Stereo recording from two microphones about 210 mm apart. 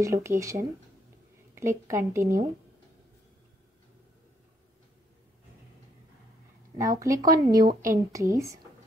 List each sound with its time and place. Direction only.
0.0 s a woman's voice: 15° right (ahead or behind)
6.8 s speech: 15° right (ahead or behind)